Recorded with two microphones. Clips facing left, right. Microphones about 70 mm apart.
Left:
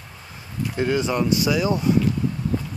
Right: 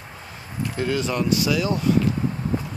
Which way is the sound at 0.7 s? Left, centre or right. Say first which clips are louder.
Left 2 dB; centre.